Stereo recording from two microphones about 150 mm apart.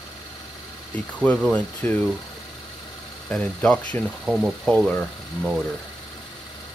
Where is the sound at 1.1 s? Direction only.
5° left (ahead or behind).